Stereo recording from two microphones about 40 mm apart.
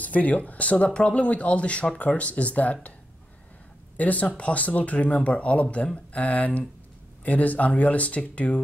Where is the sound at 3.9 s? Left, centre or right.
Left.